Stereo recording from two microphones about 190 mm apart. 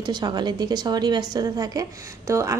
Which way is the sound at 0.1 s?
20° right (ahead or behind).